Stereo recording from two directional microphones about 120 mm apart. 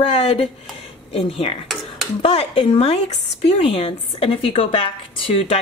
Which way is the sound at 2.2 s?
60° left (ahead or behind).